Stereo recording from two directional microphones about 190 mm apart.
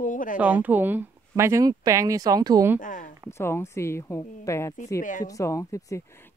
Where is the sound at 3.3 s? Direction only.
15° left (ahead or behind).